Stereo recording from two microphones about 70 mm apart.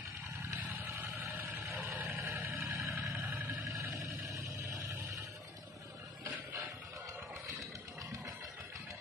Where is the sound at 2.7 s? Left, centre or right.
Right.